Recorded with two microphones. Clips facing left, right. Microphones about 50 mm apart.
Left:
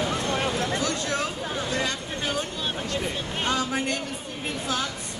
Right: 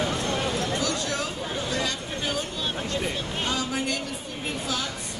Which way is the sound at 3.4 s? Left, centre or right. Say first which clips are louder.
Left 3 dB; left.